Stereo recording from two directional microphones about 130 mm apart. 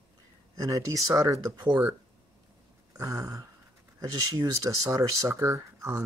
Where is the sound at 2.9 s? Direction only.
25° right (ahead or behind).